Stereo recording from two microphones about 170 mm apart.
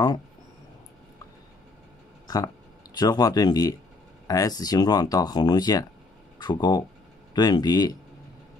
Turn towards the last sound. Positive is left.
turn(degrees=25)  # may be behind; listen again after turning